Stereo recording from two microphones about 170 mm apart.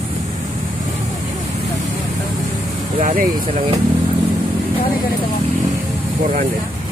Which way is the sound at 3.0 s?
50° right (ahead or behind).